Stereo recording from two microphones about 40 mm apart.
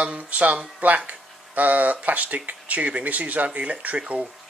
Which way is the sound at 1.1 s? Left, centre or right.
Right.